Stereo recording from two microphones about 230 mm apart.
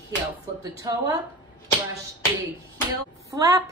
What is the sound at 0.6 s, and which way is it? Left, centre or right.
Speech, centre.